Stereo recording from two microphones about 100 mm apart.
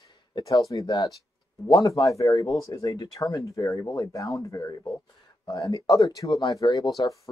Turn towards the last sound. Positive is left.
turn(degrees=40)  # may be behind; listen again after turning